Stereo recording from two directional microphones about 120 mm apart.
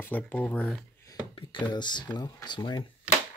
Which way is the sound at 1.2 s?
45° left (ahead or behind).